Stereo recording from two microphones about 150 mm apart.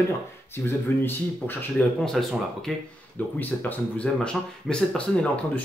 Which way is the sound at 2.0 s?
Centre (ahead or behind).